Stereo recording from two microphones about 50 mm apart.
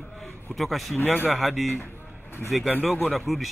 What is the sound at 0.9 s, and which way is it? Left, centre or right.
Speech, left.